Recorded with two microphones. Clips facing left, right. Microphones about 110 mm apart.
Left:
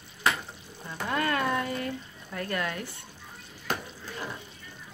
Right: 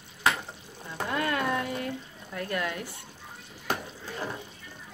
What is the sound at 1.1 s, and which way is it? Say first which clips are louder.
Speech: left 1 dB; 5° right (ahead or behind).